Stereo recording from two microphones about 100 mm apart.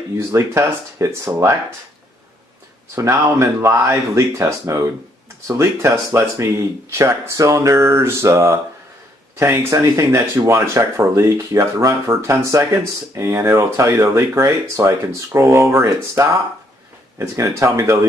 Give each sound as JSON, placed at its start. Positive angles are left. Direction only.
{"t": 0.3, "sound": "speech", "side_deg": -30}
{"t": 3.1, "sound": "speech", "side_deg": -30}